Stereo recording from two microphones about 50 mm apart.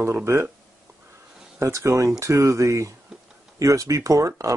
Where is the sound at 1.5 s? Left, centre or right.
Right.